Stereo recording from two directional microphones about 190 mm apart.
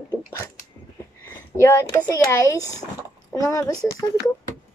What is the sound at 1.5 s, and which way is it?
A woman's voice, 15° left (ahead or behind).